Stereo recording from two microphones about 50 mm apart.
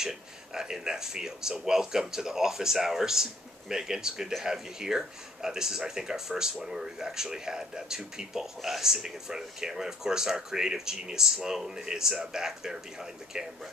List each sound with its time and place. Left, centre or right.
0.0 s speech: centre